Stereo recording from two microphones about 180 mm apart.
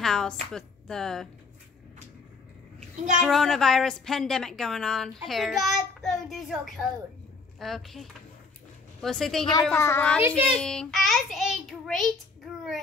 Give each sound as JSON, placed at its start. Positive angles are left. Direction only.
{"t": 0.0, "sound": "a woman's voice", "side_deg": 5}
{"t": 3.2, "sound": "a woman's voice", "side_deg": 0}
{"t": 9.4, "sound": "a woman's voice", "side_deg": 25}